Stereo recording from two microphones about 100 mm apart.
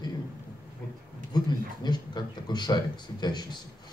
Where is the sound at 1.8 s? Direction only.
45° left (ahead or behind).